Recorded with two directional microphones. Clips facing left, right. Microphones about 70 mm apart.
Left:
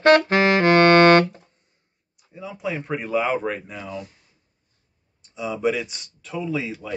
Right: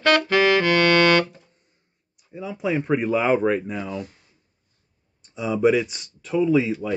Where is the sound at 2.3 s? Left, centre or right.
Centre.